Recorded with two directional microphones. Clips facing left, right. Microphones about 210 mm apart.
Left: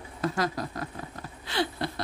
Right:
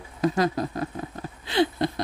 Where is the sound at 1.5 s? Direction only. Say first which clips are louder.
Right 7 dB; 20° right (ahead or behind).